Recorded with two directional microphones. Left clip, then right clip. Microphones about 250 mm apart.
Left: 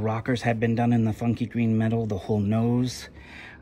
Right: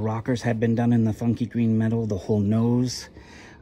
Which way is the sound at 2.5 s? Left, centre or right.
Right.